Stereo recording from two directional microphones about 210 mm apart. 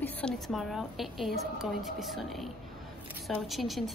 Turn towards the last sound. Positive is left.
turn(degrees=0)  # may be behind; listen again after turning